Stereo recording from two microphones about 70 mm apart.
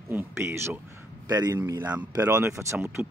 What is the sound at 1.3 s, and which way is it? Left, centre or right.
Speech, right.